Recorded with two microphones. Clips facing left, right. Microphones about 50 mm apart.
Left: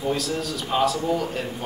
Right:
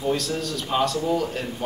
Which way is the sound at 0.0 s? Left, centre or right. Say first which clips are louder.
Even; centre.